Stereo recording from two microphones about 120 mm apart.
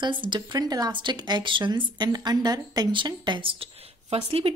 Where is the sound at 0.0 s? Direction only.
40° right (ahead or behind).